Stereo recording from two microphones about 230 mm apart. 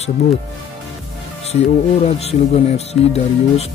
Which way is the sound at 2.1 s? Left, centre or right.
Left.